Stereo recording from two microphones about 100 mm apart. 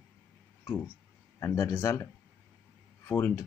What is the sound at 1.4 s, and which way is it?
Speech, 30° left (ahead or behind).